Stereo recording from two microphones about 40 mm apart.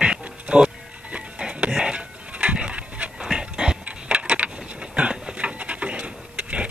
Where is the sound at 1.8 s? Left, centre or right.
Right.